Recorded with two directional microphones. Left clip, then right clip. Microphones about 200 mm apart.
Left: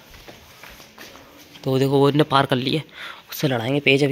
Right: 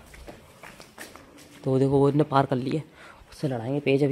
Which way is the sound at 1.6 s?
10° right (ahead or behind).